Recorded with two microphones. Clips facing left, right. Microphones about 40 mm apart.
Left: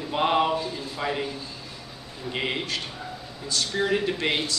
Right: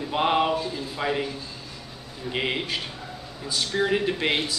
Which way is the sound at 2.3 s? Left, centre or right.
Centre.